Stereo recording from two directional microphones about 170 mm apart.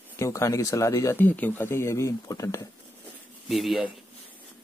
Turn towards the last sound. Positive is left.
turn(degrees=0)  # may be behind; listen again after turning